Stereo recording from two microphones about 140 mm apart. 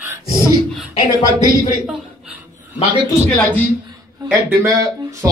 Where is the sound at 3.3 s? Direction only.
10° left (ahead or behind).